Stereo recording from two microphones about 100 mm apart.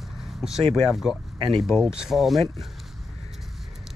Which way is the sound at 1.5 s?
Centre (ahead or behind).